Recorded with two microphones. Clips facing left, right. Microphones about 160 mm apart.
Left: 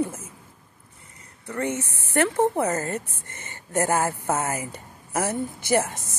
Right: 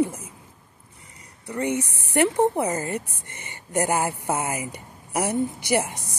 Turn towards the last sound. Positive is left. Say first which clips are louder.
# left 1 dB
turn(degrees=-15)  # may be behind; listen again after turning